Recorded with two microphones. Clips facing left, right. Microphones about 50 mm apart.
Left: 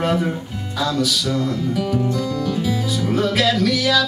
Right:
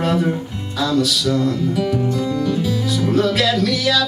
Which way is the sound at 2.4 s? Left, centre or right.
Centre.